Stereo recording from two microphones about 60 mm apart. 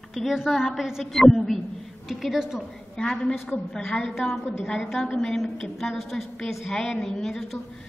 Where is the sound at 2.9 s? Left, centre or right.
Centre.